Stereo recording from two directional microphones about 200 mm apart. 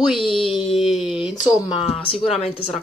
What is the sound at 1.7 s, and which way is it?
Speech, 30° left (ahead or behind).